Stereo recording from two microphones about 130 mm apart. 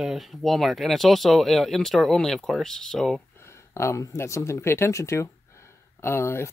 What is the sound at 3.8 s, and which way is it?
Speech, 20° left (ahead or behind).